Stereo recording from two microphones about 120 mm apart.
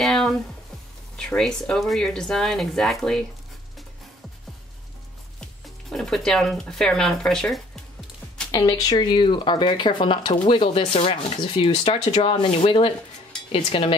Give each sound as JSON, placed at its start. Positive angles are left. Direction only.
{"t": 0.0, "sound": "music", "side_deg": 5}
{"t": 1.1, "sound": "speech", "side_deg": 5}
{"t": 5.9, "sound": "speech", "side_deg": 0}
{"t": 8.5, "sound": "speech", "side_deg": 30}